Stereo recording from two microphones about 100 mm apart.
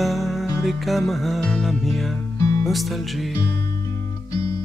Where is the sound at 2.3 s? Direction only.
35° left (ahead or behind).